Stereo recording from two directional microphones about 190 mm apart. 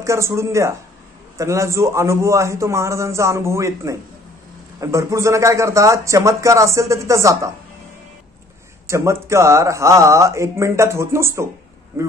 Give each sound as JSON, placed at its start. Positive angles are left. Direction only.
{"t": 0.0, "sound": "speech", "side_deg": -15}
{"t": 8.8, "sound": "speech", "side_deg": -15}